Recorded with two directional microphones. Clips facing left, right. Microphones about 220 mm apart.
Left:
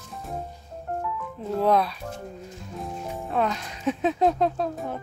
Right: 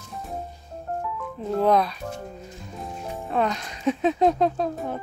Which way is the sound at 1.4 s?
5° left (ahead or behind).